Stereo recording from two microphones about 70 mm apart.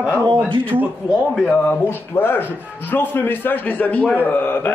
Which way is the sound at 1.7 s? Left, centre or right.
Left.